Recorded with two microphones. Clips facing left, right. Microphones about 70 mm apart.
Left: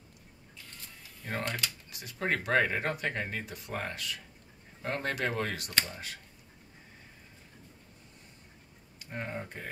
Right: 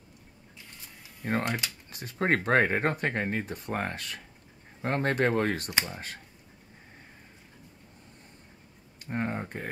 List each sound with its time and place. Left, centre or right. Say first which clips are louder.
1.2 s speech: right 5 dB; right
5.7 s speech: right 2 dB; centre
9.0 s speech: right 6 dB; right